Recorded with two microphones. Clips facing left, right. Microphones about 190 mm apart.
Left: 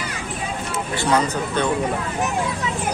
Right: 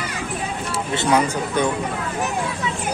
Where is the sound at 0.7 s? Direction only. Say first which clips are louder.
Right 2 dB; 25° right (ahead or behind).